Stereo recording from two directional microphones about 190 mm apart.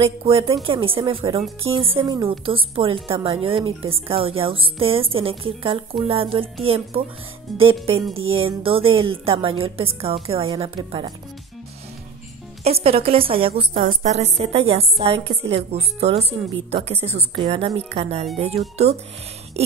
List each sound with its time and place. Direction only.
0.0 s a woman's voice: 30° right (ahead or behind)
7.5 s speech: centre (ahead or behind)
8.3 s a woman's voice: 30° right (ahead or behind)
12.6 s a woman's voice: 30° right (ahead or behind)
13.7 s a woman's voice: 45° right (ahead or behind)
19.6 s a sound: 35° right (ahead or behind)